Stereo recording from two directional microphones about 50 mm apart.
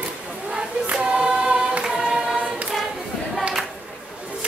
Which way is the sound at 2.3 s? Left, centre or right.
Right.